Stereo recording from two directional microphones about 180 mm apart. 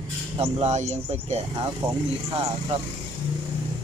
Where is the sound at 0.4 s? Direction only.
40° right (ahead or behind).